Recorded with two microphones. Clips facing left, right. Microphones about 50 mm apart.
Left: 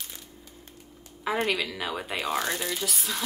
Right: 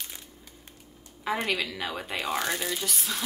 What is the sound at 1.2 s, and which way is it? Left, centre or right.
Speech, centre.